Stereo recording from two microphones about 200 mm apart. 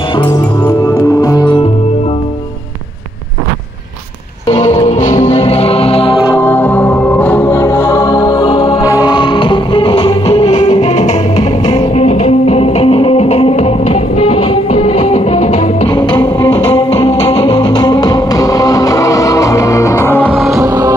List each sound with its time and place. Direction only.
0.2 s music: 20° left (ahead or behind)
4.5 s music: 30° left (ahead or behind)
6.3 s music: 10° left (ahead or behind); by 11.4 s 35° left (ahead or behind)
11.6 s music: 25° left (ahead or behind)
20.5 s music: 15° right (ahead or behind)